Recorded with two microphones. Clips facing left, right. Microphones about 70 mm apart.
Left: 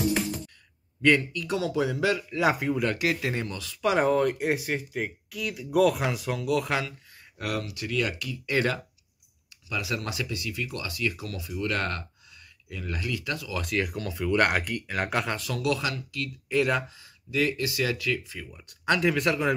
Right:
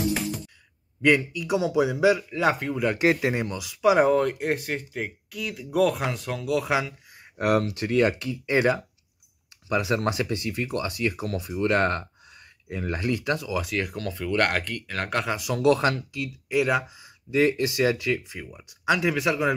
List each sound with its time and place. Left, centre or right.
1.0 s a man's voice: centre
2.3 s speech: centre
3.0 s speech: right; by 6.8 s centre
7.3 s speech: right
9.7 s speech: right
13.6 s speech: centre
15.2 s a man's voice: centre
15.5 s speech: right
16.4 s speech: centre
17.3 s speech: right; by 19.5 s centre